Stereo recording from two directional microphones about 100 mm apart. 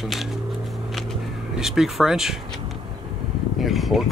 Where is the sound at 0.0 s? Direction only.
Centre (ahead or behind).